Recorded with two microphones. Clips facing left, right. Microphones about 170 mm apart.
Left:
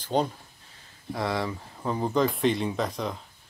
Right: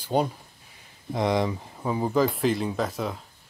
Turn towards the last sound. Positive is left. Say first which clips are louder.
# right 1 dB
turn(degrees=-5)  # may be behind; listen again after turning